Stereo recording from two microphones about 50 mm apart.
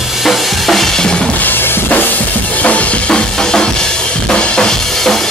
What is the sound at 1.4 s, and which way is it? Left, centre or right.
Drum kit, left.